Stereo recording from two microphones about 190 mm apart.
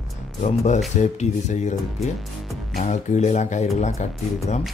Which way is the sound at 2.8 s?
40° left (ahead or behind).